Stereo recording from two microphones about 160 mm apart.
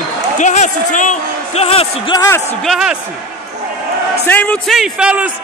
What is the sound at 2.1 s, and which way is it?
Speech, 20° left (ahead or behind).